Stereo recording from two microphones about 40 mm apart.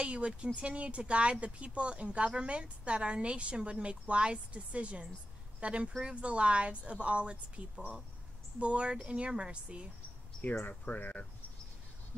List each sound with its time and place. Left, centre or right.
0.0 s speech: right
10.6 s speech: left